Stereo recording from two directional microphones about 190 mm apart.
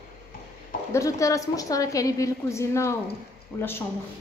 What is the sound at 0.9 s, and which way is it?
A woman's voice, 15° left (ahead or behind).